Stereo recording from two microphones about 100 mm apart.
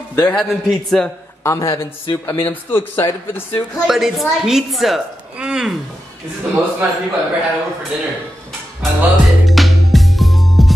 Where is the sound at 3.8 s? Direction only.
Centre (ahead or behind).